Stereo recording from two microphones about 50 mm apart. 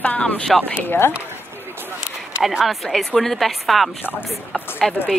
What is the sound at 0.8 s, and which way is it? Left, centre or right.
Speech, left.